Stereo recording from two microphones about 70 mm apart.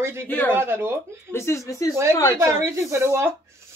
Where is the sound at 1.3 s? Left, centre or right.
Left.